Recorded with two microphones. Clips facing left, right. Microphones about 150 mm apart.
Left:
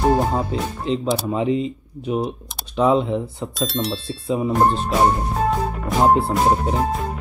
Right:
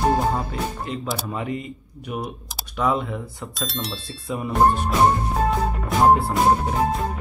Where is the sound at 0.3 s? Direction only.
25° left (ahead or behind).